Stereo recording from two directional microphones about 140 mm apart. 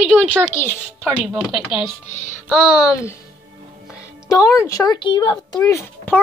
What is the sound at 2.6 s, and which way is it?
Speech, 25° left (ahead or behind).